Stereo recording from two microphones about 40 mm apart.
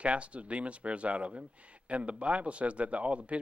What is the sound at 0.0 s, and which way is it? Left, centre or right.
Speech, right.